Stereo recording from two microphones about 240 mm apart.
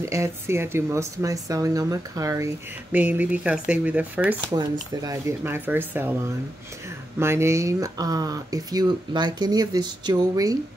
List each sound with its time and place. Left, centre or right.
0.0 s speech: centre
7.2 s speech: centre